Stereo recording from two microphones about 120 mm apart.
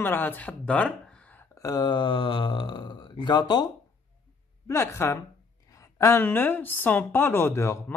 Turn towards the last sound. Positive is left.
turn(degrees=20)  # may be behind; listen again after turning